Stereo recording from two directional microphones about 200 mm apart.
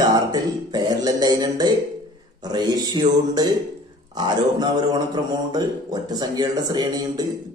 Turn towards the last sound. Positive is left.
turn(degrees=-20)  # may be behind; listen again after turning